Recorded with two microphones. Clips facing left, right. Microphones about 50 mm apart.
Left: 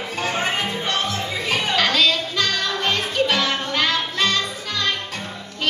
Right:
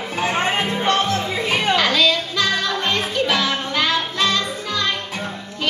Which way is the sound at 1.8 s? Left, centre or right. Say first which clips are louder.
Right 1 dB; centre.